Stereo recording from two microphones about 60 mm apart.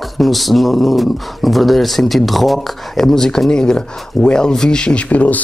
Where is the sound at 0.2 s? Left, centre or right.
Centre.